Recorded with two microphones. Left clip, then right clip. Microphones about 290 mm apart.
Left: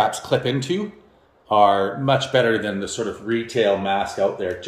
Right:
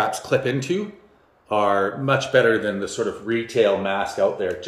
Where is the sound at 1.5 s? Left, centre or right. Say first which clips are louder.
Left 4 dB; centre.